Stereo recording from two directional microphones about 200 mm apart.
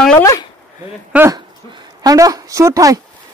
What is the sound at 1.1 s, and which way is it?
Speech, 10° right (ahead or behind).